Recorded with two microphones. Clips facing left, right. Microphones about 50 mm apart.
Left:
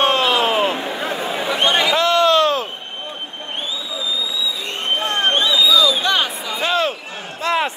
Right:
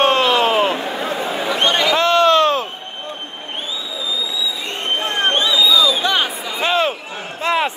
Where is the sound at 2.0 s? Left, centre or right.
Right.